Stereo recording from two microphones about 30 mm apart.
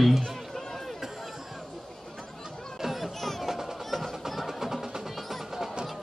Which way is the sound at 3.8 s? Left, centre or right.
Centre.